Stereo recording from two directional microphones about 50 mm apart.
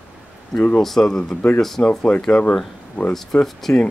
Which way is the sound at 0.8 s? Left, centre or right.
Centre.